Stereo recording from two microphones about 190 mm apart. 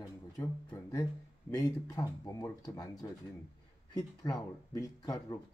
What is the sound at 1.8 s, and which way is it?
Speech, 20° left (ahead or behind).